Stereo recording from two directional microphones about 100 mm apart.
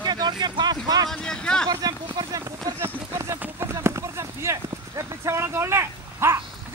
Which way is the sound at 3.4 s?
25° right (ahead or behind).